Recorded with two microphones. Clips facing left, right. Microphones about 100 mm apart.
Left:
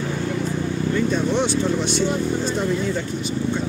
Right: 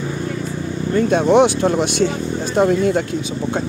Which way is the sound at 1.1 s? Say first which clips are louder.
Right 8 dB; 65° right (ahead or behind).